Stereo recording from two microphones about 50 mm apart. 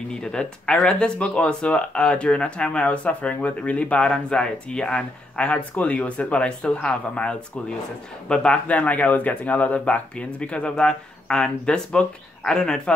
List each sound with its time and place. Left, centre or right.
0.1 s speech: centre